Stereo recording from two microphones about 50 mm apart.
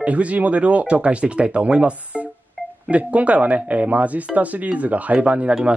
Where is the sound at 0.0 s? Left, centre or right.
Right.